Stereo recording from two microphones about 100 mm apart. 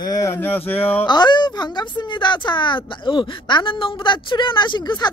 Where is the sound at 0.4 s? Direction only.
20° left (ahead or behind).